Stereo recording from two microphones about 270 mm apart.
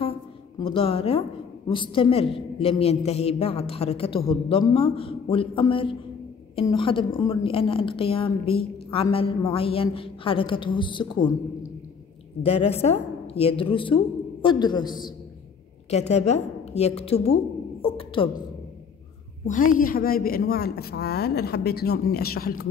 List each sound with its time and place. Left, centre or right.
0.6 s a woman's voice: centre
12.4 s a woman's voice: left
17.8 s a sound: centre
19.4 s a woman's voice: left